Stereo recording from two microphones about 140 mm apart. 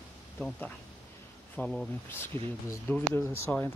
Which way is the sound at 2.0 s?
15° left (ahead or behind).